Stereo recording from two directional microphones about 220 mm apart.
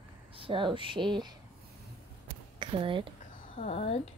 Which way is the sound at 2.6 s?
25° right (ahead or behind).